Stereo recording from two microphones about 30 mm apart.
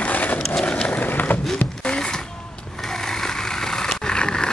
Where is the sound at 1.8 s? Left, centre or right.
Left.